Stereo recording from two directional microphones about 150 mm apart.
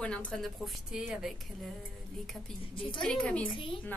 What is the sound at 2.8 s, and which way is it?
Speech, 35° left (ahead or behind).